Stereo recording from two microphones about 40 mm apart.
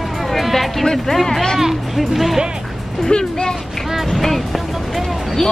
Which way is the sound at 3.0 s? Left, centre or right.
Centre.